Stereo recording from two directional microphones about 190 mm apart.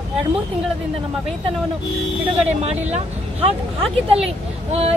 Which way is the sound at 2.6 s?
35° right (ahead or behind).